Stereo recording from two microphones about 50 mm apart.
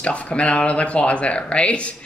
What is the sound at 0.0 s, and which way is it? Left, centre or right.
A woman's voice, left.